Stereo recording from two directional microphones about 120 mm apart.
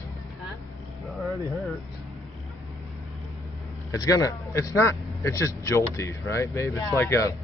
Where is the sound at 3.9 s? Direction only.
30° left (ahead or behind).